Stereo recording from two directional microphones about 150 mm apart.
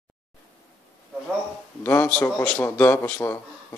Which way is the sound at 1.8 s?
10° left (ahead or behind).